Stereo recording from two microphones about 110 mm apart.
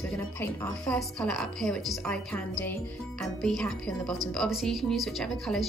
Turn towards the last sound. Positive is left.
turn(degrees=0)  # may be behind; listen again after turning